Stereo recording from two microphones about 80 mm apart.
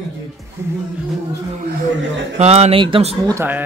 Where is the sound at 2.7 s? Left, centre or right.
Right.